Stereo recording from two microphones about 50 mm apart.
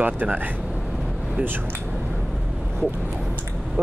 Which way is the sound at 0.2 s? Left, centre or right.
Right.